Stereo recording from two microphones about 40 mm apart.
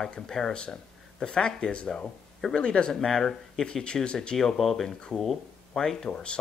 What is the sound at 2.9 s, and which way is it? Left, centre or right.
Speech, centre.